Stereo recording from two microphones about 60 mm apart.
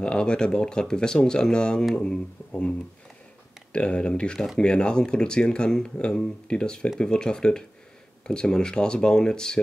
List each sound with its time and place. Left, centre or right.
0.0 s speech: centre
3.7 s speech: centre